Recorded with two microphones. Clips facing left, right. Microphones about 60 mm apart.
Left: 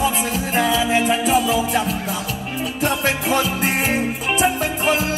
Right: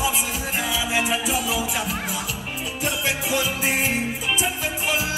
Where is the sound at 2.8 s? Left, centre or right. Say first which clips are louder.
Left 5 dB; left.